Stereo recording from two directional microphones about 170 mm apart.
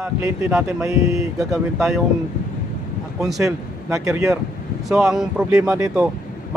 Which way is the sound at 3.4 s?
15° right (ahead or behind).